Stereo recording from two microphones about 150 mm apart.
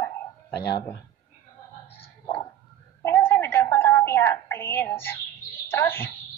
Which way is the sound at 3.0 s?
15° left (ahead or behind).